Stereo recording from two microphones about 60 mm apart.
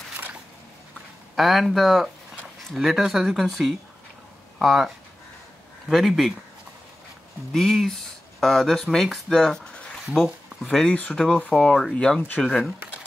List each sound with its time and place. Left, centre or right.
1.3 s speech: centre
7.5 s speech: centre
10.1 s speech: centre
10.7 s speech: centre
11.5 s speech: centre